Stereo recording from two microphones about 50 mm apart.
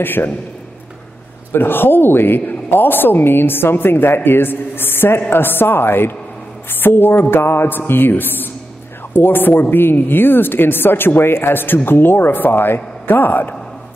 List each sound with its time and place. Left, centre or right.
0.0 s a woman's voice: left
1.5 s a woman's voice: left